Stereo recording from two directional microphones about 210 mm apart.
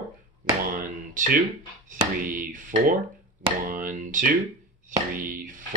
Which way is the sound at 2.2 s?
40° right (ahead or behind).